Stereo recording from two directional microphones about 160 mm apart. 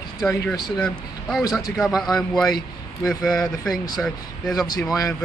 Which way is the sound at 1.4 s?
20° left (ahead or behind).